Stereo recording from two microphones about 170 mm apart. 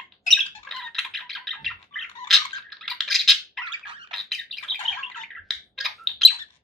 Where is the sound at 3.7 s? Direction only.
30° right (ahead or behind).